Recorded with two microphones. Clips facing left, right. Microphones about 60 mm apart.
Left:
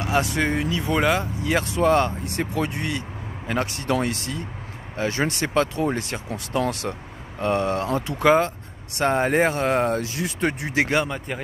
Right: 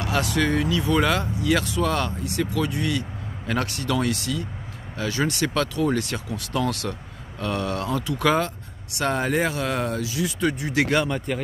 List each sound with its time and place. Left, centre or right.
0.0 s speech: left
11.1 s speech: centre